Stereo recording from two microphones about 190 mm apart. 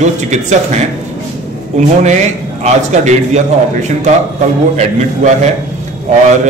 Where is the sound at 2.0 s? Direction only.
35° right (ahead or behind).